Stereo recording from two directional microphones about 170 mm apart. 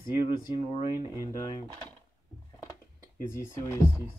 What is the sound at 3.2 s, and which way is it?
Speech, 15° left (ahead or behind).